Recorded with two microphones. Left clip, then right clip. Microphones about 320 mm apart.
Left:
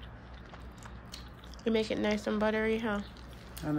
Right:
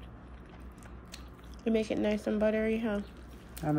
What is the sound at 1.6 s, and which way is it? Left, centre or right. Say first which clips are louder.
A woman's voice: even; centre.